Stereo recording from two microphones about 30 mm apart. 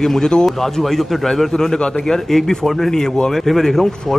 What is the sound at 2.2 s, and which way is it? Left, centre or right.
Speech, centre.